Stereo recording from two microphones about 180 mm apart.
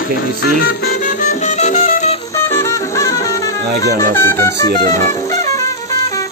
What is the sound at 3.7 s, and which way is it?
Speech, 60° right (ahead or behind).